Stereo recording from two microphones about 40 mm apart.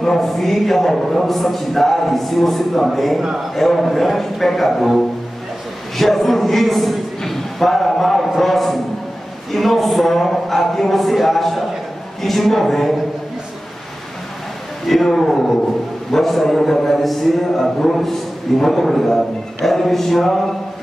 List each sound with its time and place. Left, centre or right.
0.0 s a man's voice: centre
3.2 s a man's voice: centre
3.5 s a man's voice: centre
14.9 s a man's voice: centre